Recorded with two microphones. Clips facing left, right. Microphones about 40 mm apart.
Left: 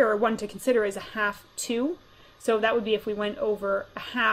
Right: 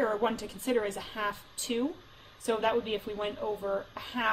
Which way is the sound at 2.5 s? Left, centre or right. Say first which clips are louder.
Left 5 dB; left.